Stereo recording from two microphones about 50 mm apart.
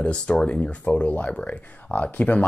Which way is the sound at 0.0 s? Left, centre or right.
Left.